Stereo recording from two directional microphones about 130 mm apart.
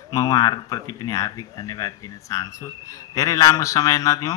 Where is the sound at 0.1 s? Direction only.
25° left (ahead or behind).